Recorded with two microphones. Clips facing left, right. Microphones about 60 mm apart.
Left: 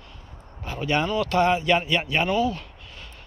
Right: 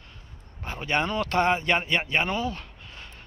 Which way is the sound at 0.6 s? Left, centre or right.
Right.